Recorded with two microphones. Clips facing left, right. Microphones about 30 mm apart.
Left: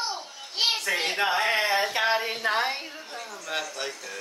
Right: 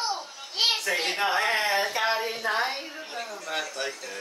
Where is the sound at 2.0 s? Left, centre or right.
Centre.